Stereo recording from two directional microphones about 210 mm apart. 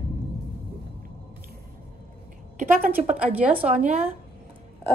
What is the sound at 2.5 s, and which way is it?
Speech, 40° right (ahead or behind).